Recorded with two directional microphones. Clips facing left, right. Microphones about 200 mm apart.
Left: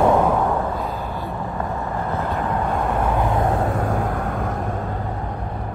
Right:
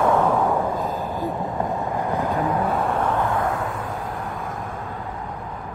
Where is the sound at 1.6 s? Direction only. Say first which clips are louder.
Right 1 dB; 15° right (ahead or behind); by 3.3 s 10° left (ahead or behind).